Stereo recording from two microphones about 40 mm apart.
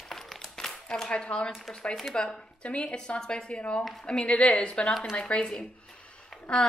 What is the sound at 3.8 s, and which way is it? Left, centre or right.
Speech, centre.